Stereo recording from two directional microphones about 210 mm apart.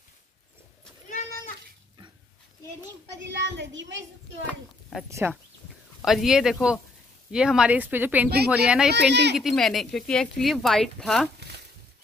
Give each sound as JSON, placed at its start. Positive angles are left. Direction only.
{"t": 3.3, "sound": "a child's voice", "side_deg": -55}
{"t": 4.5, "sound": "a woman's voice", "side_deg": 5}
{"t": 6.0, "sound": "speech", "side_deg": 0}
{"t": 8.9, "sound": "speech", "side_deg": -55}
{"t": 9.4, "sound": "speech", "side_deg": 0}